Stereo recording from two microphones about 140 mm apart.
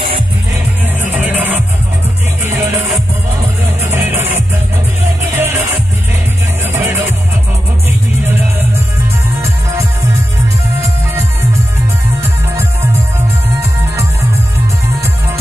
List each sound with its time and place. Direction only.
1.1 s music: 10° right (ahead or behind)
3.9 s music: 15° right (ahead or behind)
5.3 s music: 15° right (ahead or behind)